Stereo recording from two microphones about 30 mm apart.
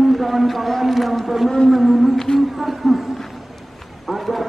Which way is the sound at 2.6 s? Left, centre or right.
Centre.